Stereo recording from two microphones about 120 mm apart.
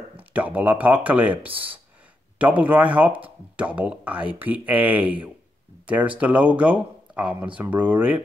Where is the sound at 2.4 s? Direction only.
10° right (ahead or behind).